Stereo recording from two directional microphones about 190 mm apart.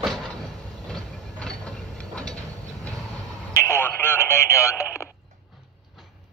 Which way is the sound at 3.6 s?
10° left (ahead or behind).